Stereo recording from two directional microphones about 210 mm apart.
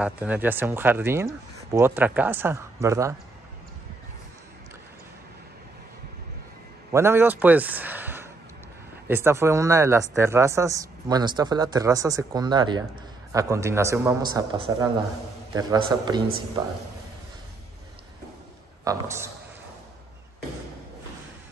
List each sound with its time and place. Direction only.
0.0 s speech: 5° right (ahead or behind)
6.9 s a man's voice: 10° right (ahead or behind)
18.9 s speech: 10° right (ahead or behind)